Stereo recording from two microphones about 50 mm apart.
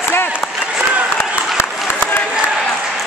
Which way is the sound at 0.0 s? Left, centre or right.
Left.